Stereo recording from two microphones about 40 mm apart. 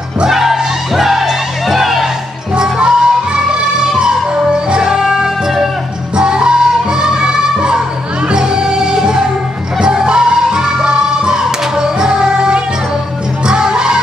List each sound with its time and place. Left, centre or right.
0.3 s music: centre
2.5 s music: right